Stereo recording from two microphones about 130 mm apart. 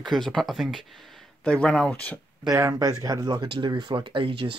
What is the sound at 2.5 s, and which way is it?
Speech, 25° right (ahead or behind).